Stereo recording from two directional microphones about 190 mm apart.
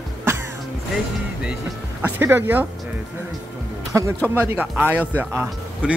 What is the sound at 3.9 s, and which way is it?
Speech, 15° right (ahead or behind).